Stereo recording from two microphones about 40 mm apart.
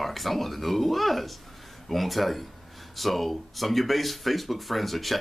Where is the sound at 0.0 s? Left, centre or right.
Centre.